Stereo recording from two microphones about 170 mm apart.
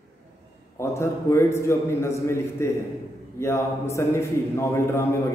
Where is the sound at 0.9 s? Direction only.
15° left (ahead or behind).